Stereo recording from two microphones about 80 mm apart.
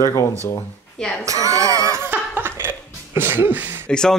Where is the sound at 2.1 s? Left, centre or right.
Right.